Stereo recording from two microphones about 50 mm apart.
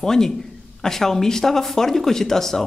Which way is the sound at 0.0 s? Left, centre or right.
Centre.